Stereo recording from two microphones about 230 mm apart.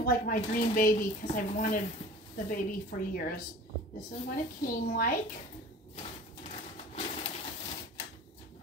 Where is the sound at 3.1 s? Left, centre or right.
Left.